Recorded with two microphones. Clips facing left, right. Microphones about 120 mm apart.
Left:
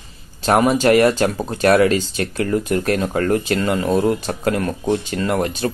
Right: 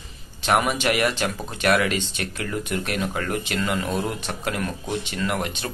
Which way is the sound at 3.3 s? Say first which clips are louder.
Left 8 dB; 30° left (ahead or behind).